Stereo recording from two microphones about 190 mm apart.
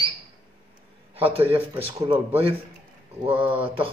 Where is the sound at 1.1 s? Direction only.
30° right (ahead or behind).